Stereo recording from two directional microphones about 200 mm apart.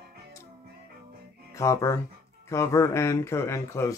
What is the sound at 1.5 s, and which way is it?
Speech, 15° left (ahead or behind).